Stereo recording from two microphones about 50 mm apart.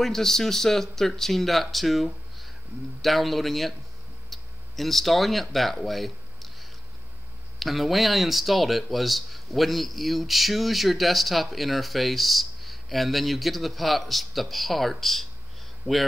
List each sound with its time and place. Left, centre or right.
0.0 s speech: centre
15.8 s speech: right